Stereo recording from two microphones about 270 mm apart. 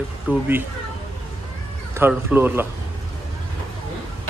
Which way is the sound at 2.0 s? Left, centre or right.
Centre.